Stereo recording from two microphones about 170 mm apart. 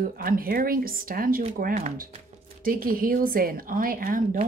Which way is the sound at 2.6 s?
55° right (ahead or behind).